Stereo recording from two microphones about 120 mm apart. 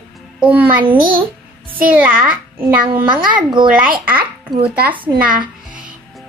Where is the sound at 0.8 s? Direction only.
45° right (ahead or behind).